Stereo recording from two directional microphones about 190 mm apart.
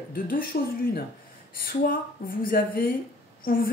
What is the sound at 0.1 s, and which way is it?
Speech, 50° left (ahead or behind).